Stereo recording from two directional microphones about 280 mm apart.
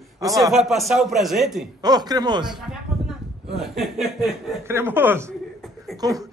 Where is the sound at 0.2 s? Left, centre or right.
Centre.